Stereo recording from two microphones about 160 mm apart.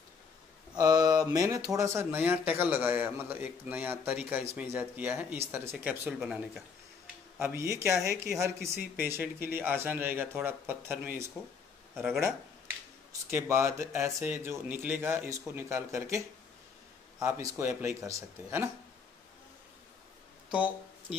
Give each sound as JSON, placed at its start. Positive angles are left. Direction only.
{"t": 0.7, "sound": "speech", "side_deg": -25}
{"t": 7.3, "sound": "speech", "side_deg": -15}
{"t": 13.3, "sound": "speech", "side_deg": -15}
{"t": 17.2, "sound": "speech", "side_deg": -15}
{"t": 20.5, "sound": "speech", "side_deg": -10}